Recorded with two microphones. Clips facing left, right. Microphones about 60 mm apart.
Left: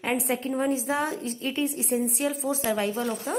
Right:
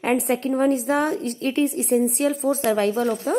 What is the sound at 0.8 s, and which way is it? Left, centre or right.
A woman's voice, right.